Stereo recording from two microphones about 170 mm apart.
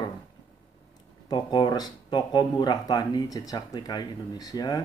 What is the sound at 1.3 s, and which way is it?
Speech, 25° left (ahead or behind).